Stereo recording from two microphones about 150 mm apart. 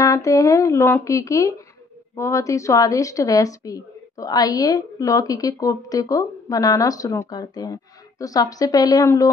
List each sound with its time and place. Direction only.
0.0 s a woman's voice: 20° left (ahead or behind)